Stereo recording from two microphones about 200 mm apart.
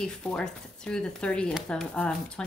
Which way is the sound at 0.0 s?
5° left (ahead or behind).